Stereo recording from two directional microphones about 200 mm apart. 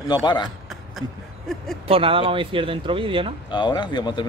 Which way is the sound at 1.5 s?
Centre (ahead or behind).